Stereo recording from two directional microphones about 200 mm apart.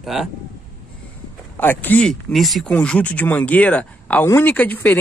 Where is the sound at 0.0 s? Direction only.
Centre (ahead or behind).